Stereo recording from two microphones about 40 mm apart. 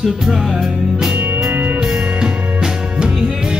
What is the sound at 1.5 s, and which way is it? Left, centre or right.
Music, right.